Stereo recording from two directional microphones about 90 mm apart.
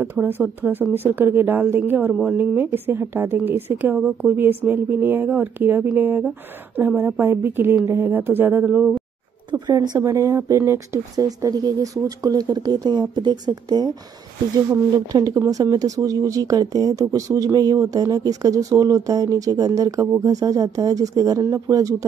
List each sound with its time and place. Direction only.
0.0 s speech: 20° right (ahead or behind)
9.5 s speech: 50° right (ahead or behind)
9.9 s speech: 35° right (ahead or behind)
11.1 s speech: 45° right (ahead or behind)
15.3 s speech: 40° right (ahead or behind)